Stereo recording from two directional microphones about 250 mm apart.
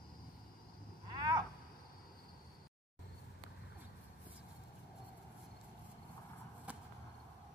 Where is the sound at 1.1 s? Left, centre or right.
Centre.